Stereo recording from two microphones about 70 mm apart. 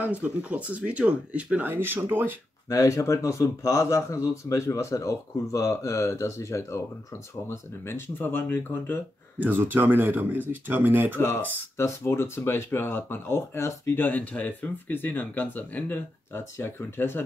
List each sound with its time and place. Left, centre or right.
0.0 s speech: right
2.7 s speech: left
7.4 s speech: left
9.4 s speech: right
11.1 s speech: left
13.9 s speech: left